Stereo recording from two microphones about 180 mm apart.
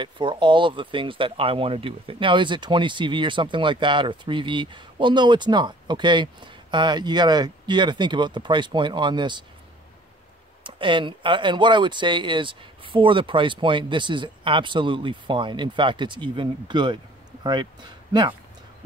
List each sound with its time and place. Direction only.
0.0 s speech: 25° right (ahead or behind)
10.6 s speech: 25° right (ahead or behind)